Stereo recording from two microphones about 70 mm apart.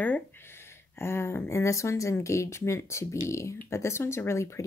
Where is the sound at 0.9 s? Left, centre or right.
Left.